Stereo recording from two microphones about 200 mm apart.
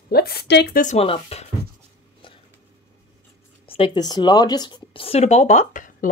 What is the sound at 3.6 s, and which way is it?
Speech, 25° left (ahead or behind).